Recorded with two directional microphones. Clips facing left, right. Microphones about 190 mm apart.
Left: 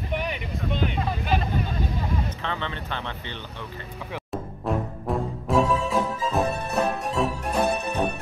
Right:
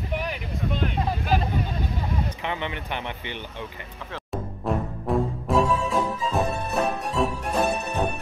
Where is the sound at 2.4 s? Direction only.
15° right (ahead or behind).